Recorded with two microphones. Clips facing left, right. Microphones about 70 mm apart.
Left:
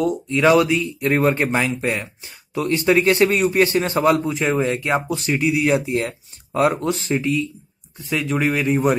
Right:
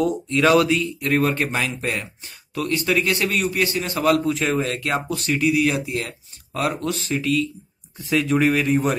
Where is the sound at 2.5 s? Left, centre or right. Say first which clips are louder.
Left 4 dB; left.